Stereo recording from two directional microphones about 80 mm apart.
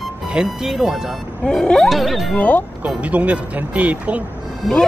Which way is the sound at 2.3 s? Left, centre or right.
Centre.